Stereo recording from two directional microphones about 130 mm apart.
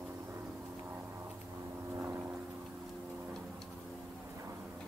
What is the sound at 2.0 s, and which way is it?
Vehicle, 20° right (ahead or behind).